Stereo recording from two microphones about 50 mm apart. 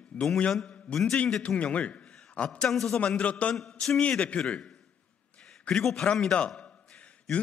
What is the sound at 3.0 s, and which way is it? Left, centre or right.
A man's voice, left.